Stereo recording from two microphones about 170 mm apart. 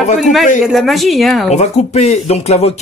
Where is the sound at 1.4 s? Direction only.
40° left (ahead or behind).